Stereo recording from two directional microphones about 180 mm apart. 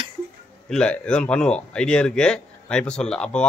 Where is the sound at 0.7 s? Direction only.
5° left (ahead or behind).